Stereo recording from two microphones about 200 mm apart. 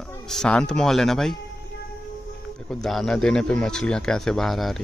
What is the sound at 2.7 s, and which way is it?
Speech, centre (ahead or behind).